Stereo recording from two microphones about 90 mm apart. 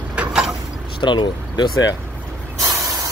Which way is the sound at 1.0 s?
60° left (ahead or behind).